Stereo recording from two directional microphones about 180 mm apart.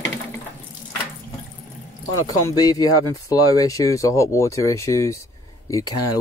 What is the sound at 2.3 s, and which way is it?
Speech, 20° left (ahead or behind).